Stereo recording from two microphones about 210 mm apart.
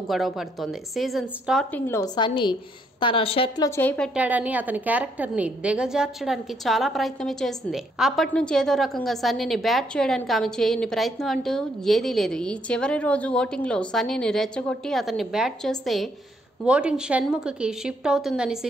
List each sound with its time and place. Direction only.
0.1 s a woman's voice: centre (ahead or behind)
4.1 s a woman's voice: 5° right (ahead or behind)